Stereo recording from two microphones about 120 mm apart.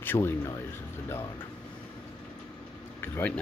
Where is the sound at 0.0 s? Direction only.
20° left (ahead or behind).